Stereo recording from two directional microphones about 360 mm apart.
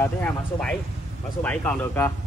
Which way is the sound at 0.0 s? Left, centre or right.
Centre.